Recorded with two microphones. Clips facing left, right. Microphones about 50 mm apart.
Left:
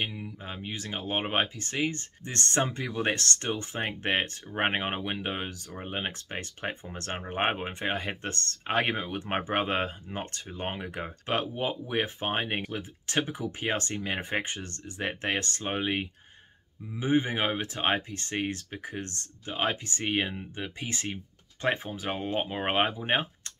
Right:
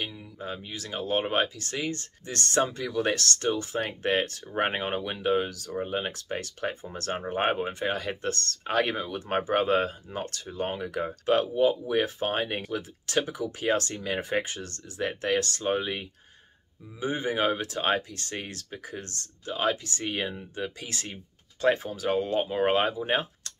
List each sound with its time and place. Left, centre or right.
0.4 s speech: left
2.2 s speech: left